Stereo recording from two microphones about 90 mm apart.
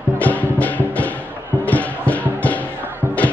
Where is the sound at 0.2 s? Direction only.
15° left (ahead or behind).